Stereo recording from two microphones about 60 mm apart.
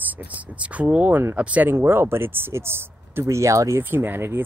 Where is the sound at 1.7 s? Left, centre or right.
Right.